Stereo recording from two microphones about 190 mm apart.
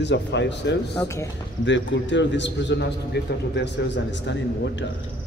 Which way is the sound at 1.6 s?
70° left (ahead or behind).